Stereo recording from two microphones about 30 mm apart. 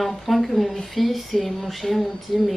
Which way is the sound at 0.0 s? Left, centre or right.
Centre.